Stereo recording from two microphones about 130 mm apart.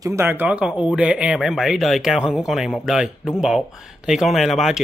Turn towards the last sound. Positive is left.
turn(degrees=0)  # may be behind; listen again after turning